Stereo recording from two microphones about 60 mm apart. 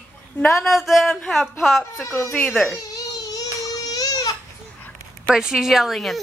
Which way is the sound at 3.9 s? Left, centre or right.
Left.